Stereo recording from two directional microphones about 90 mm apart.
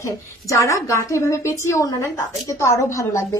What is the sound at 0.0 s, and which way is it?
A woman's voice, 35° left (ahead or behind).